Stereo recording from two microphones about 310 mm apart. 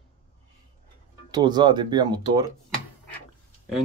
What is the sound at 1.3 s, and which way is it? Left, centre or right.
Speech, centre.